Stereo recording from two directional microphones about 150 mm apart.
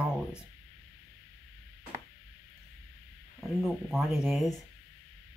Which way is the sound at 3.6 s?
Centre (ahead or behind).